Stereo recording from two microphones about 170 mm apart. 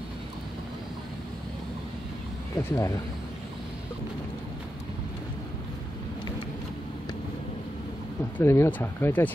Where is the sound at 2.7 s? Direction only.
20° left (ahead or behind).